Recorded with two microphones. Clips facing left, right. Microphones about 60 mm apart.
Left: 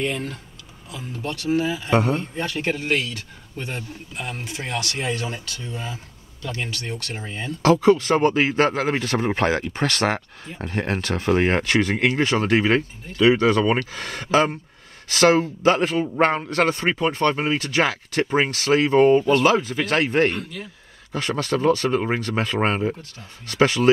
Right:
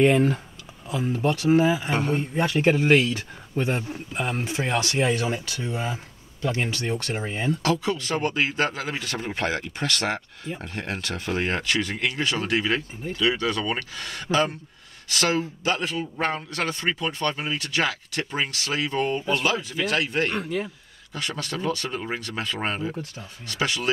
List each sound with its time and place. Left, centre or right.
0.0 s speech: right
1.9 s a man's voice: left
2.1 s speech: centre
7.6 s speech: left
20.3 s speech: right
21.1 s speech: left